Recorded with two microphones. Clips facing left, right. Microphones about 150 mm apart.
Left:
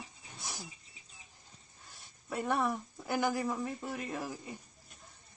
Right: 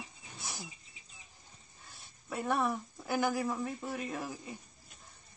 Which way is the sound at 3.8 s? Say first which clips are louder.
Right 1 dB; 15° right (ahead or behind).